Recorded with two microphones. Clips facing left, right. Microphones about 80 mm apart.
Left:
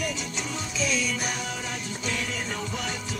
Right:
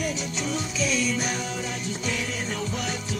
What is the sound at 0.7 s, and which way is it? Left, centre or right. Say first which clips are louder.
Music: right 1 dB; centre.